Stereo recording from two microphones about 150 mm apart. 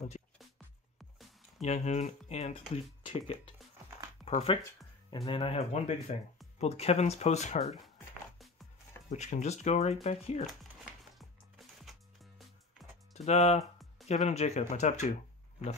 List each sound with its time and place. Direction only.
1.6 s speech: 50° left (ahead or behind)
9.1 s speech: 50° left (ahead or behind)
10.4 s music: centre (ahead or behind)
13.1 s speech: 45° left (ahead or behind)